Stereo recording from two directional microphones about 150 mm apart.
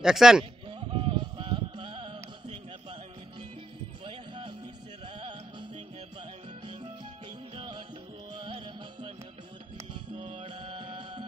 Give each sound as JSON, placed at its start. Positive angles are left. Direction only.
{"t": 0.0, "sound": "speech", "side_deg": -5}
{"t": 0.7, "sound": "music", "side_deg": -35}
{"t": 4.0, "sound": "music", "side_deg": -35}
{"t": 7.5, "sound": "music", "side_deg": -35}
{"t": 10.1, "sound": "music", "side_deg": -35}